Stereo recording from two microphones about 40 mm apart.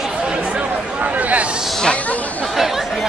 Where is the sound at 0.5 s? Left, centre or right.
Right.